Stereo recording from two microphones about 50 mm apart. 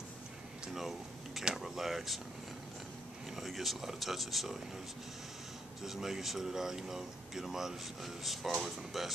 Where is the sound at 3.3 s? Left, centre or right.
Centre.